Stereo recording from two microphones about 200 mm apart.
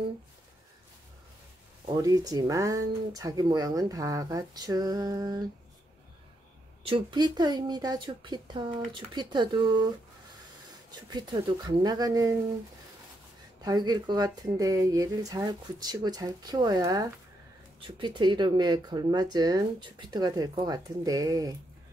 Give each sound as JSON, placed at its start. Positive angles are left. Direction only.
{"t": 2.0, "sound": "speech", "side_deg": -20}
{"t": 6.8, "sound": "speech", "side_deg": -25}
{"t": 10.9, "sound": "speech", "side_deg": -20}
{"t": 13.6, "sound": "speech", "side_deg": -20}